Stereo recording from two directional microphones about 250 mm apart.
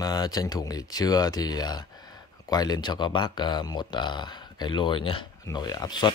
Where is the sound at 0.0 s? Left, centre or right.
Centre.